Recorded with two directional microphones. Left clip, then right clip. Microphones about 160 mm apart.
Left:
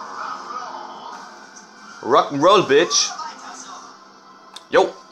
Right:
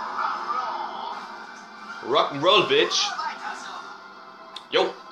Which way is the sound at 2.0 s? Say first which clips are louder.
Left 6 dB; 60° left (ahead or behind).